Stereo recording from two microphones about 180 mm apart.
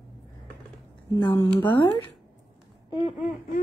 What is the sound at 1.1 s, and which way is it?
Speech, 20° left (ahead or behind).